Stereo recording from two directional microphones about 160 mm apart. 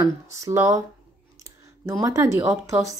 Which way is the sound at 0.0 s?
20° right (ahead or behind).